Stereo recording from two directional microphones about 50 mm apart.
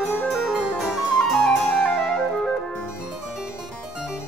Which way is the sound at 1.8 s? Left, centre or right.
Left.